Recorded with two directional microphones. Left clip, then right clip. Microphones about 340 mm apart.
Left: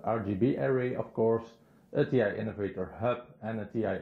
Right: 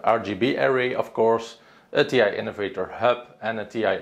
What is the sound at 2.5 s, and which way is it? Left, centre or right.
Speech, centre.